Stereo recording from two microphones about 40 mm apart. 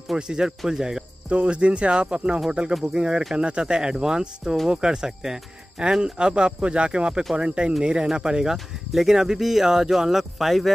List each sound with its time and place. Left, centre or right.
0.1 s speech: right
1.3 s speech: right
8.5 s speech: centre